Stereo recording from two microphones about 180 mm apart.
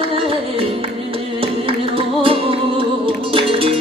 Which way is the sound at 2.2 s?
30° right (ahead or behind).